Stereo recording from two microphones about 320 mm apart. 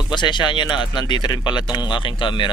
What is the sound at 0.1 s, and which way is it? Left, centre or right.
Speech, centre.